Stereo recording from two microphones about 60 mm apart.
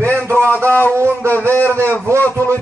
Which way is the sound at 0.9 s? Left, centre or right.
Right.